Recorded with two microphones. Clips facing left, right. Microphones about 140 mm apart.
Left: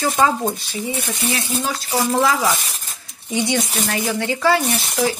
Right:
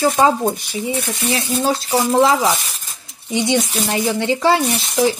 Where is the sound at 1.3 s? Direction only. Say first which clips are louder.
Right 7 dB; 30° right (ahead or behind).